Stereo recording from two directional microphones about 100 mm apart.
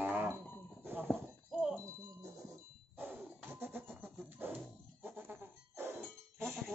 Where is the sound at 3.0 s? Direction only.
20° right (ahead or behind).